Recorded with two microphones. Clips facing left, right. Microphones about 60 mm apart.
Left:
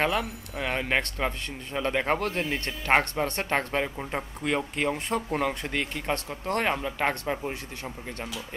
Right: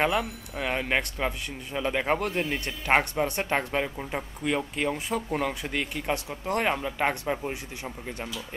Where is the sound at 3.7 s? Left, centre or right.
Centre.